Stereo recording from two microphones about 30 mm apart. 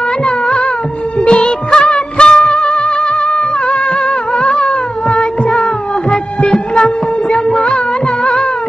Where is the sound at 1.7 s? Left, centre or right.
Left.